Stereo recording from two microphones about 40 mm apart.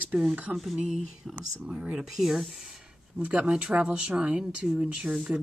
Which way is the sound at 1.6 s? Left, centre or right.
Right.